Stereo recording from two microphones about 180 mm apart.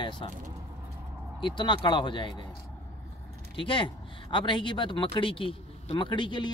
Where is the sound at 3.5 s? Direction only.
30° left (ahead or behind).